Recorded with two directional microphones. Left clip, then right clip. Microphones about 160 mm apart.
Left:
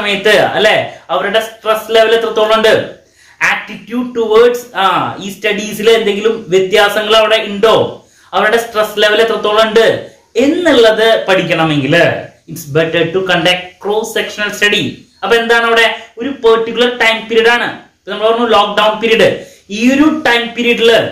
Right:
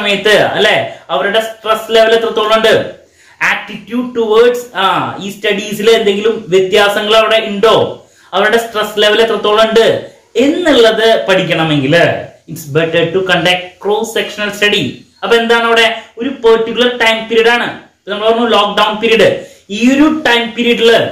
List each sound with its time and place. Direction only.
0.0 s speech: 15° left (ahead or behind)